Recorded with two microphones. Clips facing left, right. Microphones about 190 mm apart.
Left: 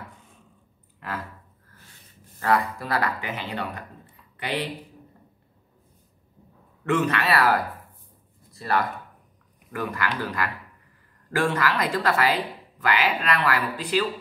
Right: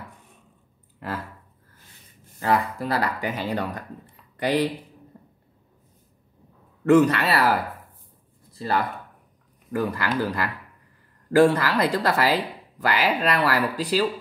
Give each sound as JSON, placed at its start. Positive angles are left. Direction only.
{"t": 0.9, "sound": "a sound", "side_deg": -30}
{"t": 2.4, "sound": "speech", "side_deg": -25}
{"t": 3.2, "sound": "speech", "side_deg": -40}
{"t": 6.8, "sound": "speech", "side_deg": -35}
{"t": 8.5, "sound": "speech", "side_deg": -30}